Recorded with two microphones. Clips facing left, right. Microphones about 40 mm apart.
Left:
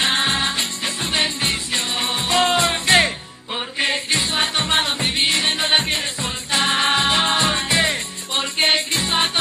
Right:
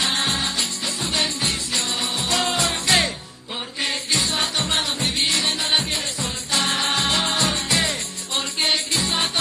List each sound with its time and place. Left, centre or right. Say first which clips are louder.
0.0 s music: left 3 dB; left